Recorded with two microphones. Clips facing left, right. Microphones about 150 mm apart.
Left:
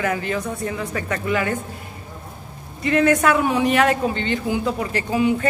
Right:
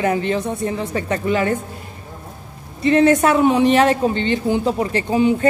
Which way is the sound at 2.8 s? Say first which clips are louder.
Right 4 dB; 25° right (ahead or behind).